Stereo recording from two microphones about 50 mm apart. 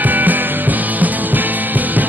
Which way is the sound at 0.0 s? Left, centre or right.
Right.